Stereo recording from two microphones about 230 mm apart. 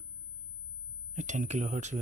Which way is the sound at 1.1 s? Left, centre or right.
Right.